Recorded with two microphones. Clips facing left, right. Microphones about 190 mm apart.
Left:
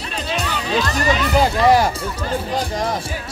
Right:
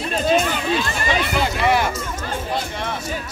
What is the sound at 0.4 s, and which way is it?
Music, 40° left (ahead or behind).